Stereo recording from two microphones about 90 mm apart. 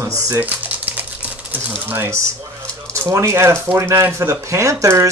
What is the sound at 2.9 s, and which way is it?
Speech, 35° right (ahead or behind).